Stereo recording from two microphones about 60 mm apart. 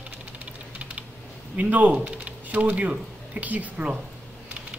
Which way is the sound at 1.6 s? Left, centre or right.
Right.